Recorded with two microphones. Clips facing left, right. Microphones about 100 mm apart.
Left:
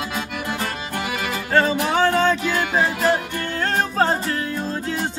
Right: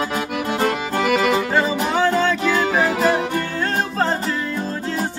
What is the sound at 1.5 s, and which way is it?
Music, 10° right (ahead or behind).